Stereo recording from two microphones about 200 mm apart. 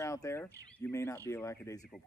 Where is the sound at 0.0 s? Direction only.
15° left (ahead or behind).